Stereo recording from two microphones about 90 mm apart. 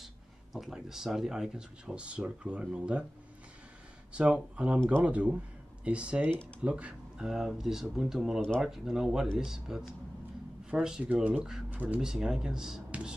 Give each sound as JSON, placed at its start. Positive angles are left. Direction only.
{"t": 0.0, "sound": "speech", "side_deg": 0}
{"t": 4.1, "sound": "speech", "side_deg": -10}